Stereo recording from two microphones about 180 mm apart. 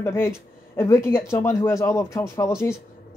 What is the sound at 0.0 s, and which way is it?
Speech, 15° left (ahead or behind).